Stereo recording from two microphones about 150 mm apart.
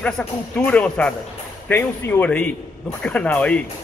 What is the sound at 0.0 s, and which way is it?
Speech, 10° left (ahead or behind).